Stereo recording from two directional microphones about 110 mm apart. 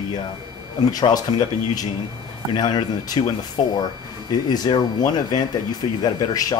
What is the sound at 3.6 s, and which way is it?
Speech, 80° left.